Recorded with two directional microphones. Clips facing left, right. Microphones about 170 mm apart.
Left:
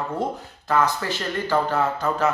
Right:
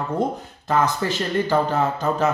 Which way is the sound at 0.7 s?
20° right (ahead or behind).